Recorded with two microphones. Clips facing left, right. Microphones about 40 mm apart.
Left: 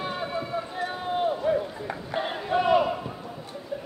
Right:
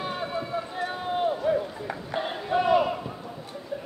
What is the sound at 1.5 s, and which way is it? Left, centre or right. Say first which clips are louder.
Run: even; centre.